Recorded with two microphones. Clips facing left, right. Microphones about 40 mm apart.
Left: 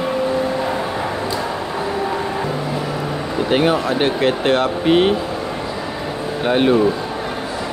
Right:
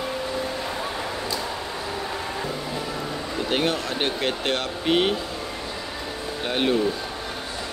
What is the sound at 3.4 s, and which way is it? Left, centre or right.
Speech, centre.